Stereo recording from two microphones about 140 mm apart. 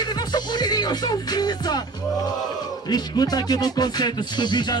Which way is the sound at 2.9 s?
30° left (ahead or behind).